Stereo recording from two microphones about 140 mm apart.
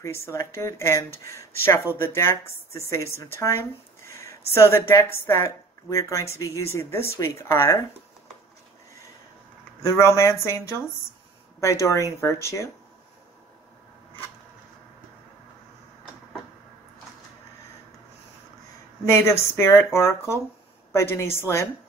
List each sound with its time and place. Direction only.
0.0 s speech: 20° left (ahead or behind)
9.8 s speech: 20° left (ahead or behind)
11.6 s speech: 20° left (ahead or behind)
19.0 s speech: 15° left (ahead or behind)